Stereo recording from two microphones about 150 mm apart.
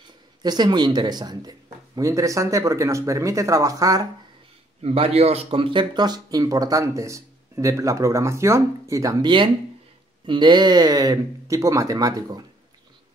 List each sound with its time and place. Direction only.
0.4 s speech: 30° right (ahead or behind)
4.8 s speech: 40° right (ahead or behind); by 12.4 s 25° right (ahead or behind)